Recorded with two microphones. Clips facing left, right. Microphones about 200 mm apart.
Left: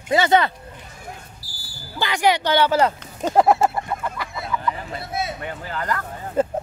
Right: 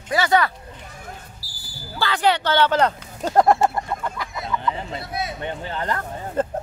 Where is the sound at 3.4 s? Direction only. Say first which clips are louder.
Even; 5° left (ahead or behind).